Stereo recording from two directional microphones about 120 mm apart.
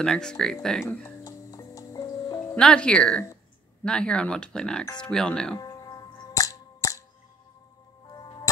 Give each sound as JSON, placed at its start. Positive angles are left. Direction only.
{"t": 0.0, "sound": "speech", "side_deg": 5}
{"t": 1.2, "sound": "music", "side_deg": 25}
{"t": 2.5, "sound": "speech", "side_deg": 5}
{"t": 5.6, "sound": "music", "side_deg": 30}
{"t": 8.1, "sound": "music", "side_deg": 35}